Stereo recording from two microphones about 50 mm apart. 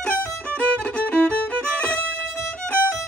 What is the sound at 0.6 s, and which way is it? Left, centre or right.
Music, left.